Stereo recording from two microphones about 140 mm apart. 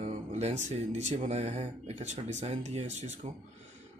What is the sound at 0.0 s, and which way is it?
Speech, 55° right (ahead or behind).